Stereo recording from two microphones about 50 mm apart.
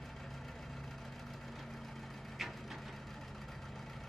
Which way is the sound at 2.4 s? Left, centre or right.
Centre.